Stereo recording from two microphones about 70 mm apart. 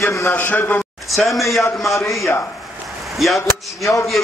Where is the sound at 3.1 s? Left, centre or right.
Centre.